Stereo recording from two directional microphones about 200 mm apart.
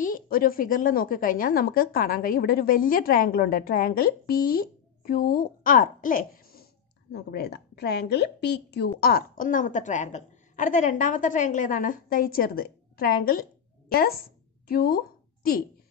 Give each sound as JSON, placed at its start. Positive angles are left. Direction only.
{"t": 0.0, "sound": "a woman's voice", "side_deg": 45}